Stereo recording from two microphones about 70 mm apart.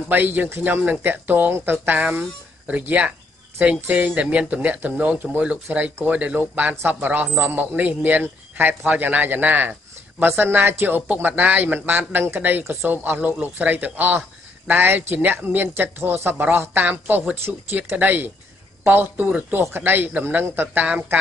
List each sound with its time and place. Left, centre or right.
0.1 s a man's voice: right